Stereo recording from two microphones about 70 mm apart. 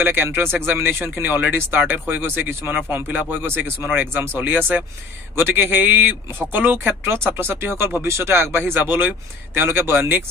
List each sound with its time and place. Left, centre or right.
0.0 s a man's voice: right